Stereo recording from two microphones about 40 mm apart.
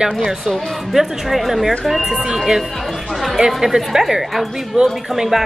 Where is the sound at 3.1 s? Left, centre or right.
Centre.